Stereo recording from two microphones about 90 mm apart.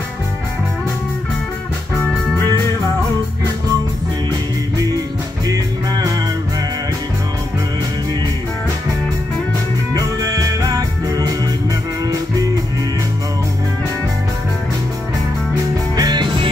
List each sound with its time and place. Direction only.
4.3 s music: 45° right (ahead or behind)
9.9 s music: 45° right (ahead or behind)
16.0 s music: 50° right (ahead or behind)